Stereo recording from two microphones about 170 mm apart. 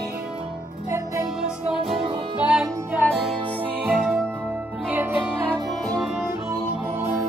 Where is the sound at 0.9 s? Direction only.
15° right (ahead or behind).